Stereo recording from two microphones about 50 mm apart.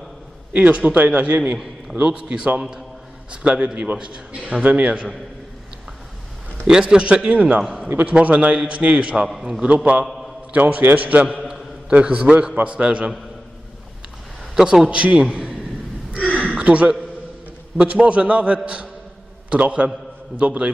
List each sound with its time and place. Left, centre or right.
0.5 s a man's voice: right
2.0 s a man's voice: centre
6.7 s a man's voice: centre
10.0 s a sound: centre
10.5 s a man's voice: right
14.5 s a man's voice: centre
14.9 s a man's voice: right
16.3 s a sound: right
16.6 s a man's voice: right